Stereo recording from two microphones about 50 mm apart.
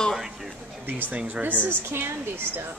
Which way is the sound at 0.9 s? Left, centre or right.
Right.